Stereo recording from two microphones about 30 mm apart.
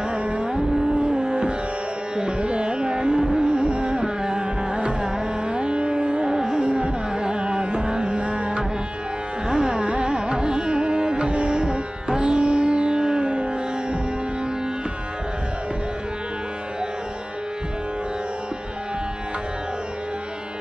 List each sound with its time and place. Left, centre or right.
0.1 s music: right
3.3 s carnatic music: right
4.0 s carnatic music: right
6.2 s music: right
6.6 s carnatic music: right
8.2 s music: right
9.5 s music: right
9.8 s carnatic music: right
10.1 s classical music: right
11.3 s music: right